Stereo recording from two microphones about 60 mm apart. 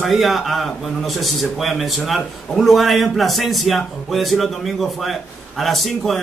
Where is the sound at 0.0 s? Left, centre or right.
Centre.